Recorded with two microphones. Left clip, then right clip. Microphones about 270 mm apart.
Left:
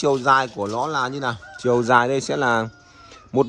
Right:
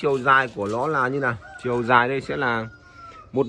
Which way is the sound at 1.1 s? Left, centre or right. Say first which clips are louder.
Right 2 dB; centre.